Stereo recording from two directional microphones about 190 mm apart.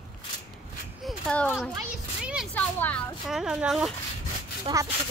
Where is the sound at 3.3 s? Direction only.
5° right (ahead or behind).